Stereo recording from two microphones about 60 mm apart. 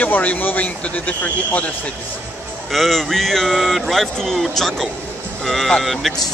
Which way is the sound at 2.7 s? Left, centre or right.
Centre.